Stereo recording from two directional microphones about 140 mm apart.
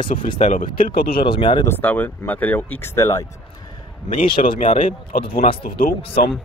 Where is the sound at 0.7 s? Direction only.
90° left.